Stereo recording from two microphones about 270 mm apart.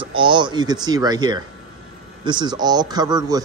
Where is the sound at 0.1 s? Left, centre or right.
Centre.